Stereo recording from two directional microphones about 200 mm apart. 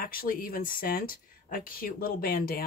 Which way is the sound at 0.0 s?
45° left (ahead or behind).